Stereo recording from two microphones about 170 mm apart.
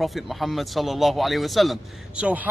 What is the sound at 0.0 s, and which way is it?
Speech, centre (ahead or behind).